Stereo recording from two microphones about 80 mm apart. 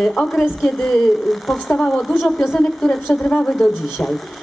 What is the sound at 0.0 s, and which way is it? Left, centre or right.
A woman's voice, centre.